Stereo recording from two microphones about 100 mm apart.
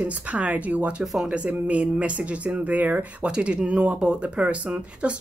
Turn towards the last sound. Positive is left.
turn(degrees=-10)  # may be behind; listen again after turning